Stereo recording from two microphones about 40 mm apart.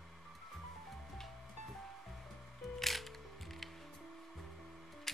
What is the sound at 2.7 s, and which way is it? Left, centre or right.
Music, centre.